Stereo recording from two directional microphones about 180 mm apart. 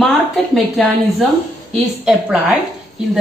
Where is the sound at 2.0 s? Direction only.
5° right (ahead or behind).